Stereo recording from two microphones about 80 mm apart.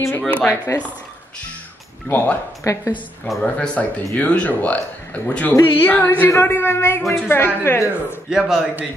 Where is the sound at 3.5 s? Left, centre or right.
Centre.